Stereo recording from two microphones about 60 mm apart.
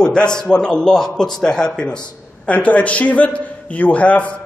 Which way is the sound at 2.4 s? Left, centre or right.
Left.